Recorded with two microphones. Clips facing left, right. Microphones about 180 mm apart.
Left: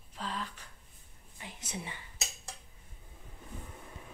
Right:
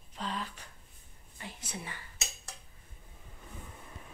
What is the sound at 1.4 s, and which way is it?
Speech, 20° left (ahead or behind).